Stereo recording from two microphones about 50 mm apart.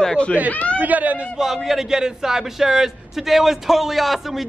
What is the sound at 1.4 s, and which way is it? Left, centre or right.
Speech, centre.